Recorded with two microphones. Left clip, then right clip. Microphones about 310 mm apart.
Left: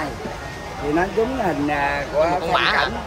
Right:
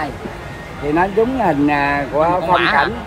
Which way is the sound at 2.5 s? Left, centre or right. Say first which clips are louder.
Right 2 dB; centre.